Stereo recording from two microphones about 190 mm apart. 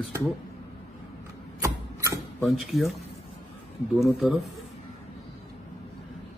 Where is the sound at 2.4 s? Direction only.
Centre (ahead or behind).